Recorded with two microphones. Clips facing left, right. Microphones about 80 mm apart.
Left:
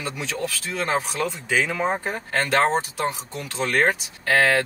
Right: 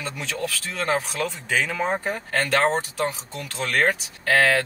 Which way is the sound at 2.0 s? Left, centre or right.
Left.